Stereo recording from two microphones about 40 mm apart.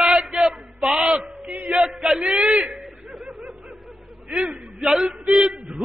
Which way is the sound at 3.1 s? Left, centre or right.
Centre.